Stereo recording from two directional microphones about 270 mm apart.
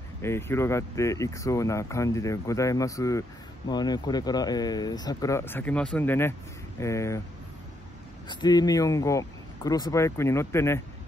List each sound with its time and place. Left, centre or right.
0.2 s speech: centre
8.3 s speech: centre